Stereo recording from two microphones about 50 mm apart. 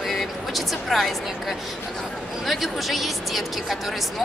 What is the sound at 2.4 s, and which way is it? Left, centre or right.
A woman's voice, centre.